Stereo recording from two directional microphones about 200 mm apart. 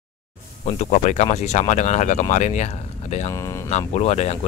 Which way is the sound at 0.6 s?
35° left (ahead or behind).